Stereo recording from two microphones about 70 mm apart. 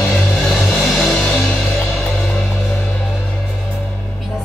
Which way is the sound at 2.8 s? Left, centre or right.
Centre.